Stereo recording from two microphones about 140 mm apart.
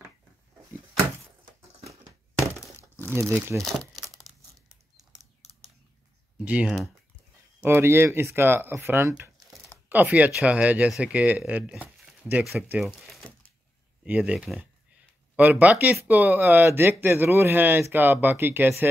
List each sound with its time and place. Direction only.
3.1 s speech: 15° right (ahead or behind)
6.3 s speech: 10° right (ahead or behind)
12.8 s crumpling: centre (ahead or behind)
14.0 s speech: 10° right (ahead or behind)